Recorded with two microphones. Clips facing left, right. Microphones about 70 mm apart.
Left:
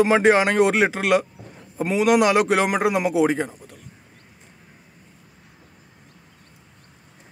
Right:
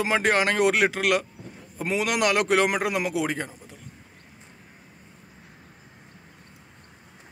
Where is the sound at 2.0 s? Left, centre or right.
Centre.